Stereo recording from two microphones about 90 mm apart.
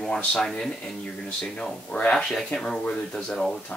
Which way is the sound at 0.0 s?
5° left (ahead or behind).